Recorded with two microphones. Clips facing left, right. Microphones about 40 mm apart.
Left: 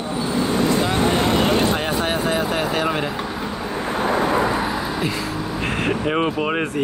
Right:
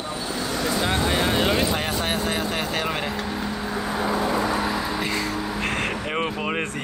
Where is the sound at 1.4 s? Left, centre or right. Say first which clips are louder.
Left 4 dB; left.